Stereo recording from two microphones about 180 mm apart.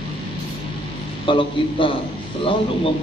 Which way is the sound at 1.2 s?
30° left (ahead or behind).